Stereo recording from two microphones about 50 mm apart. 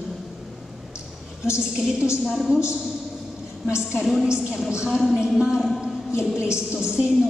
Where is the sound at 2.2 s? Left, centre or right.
Centre.